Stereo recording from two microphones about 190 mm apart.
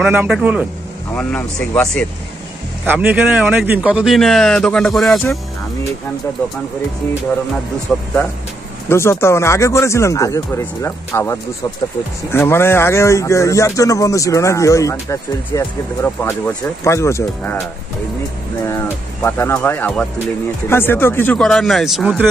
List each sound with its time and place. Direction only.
0.0 s a man's voice: 5° right (ahead or behind)
1.1 s speech: 5° left (ahead or behind)
2.8 s speech: 10° right (ahead or behind)
7.9 s speech: centre (ahead or behind)
8.8 s speech: 15° left (ahead or behind)
19.2 s speech: 10° left (ahead or behind); by 22.3 s 5° right (ahead or behind)